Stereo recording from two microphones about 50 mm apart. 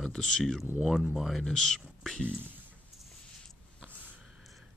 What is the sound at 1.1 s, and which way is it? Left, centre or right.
Speech, centre.